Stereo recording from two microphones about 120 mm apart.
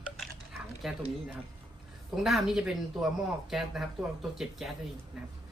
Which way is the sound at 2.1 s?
Centre (ahead or behind).